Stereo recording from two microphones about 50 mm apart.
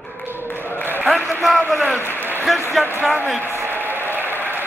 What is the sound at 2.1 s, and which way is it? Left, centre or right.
Applause, right.